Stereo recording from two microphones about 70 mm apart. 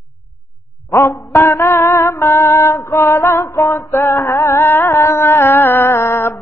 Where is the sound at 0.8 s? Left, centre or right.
Left.